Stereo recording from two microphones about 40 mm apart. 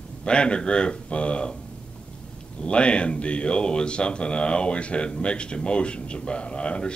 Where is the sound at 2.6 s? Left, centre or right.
Left.